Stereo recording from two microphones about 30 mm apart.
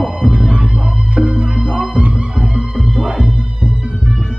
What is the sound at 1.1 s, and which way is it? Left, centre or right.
Music, right.